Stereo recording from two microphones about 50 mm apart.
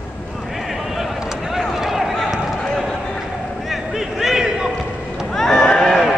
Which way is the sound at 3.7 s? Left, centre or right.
Centre.